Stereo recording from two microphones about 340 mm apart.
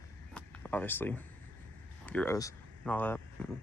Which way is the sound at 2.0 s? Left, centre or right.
Centre.